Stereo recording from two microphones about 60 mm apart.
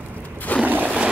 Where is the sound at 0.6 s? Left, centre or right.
Right.